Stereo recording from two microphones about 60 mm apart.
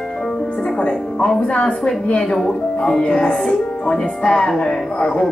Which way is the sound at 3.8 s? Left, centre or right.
Centre.